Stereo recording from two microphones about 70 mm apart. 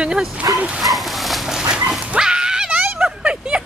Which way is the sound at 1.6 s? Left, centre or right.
Centre.